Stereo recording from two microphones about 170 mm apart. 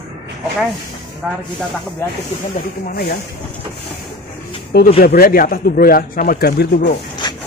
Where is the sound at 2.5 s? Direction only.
65° left (ahead or behind).